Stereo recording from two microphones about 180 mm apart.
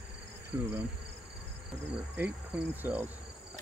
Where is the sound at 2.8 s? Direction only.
10° right (ahead or behind).